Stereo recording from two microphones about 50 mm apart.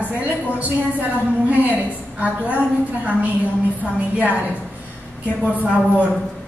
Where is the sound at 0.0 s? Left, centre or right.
Right.